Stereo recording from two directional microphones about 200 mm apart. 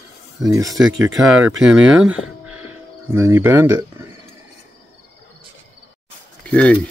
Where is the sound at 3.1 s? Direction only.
10° right (ahead or behind).